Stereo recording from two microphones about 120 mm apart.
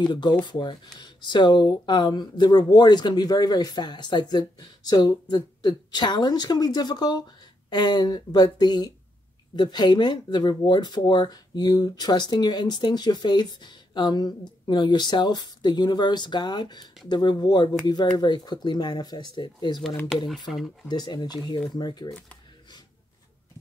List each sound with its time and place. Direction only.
0.0 s speech: 40° left (ahead or behind)
20.9 s speech: 35° left (ahead or behind)